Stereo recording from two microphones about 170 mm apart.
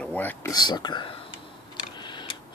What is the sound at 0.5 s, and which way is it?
Speech, 25° left (ahead or behind).